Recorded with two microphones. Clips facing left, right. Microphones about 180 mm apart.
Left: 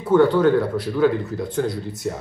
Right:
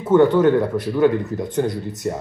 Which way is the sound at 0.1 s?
20° right (ahead or behind).